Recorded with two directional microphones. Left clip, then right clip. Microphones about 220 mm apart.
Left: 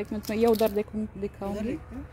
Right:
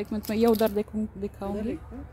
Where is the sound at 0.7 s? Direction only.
5° left (ahead or behind).